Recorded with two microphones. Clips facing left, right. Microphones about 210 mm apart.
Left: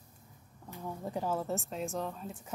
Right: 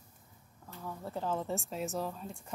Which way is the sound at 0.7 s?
15° left (ahead or behind).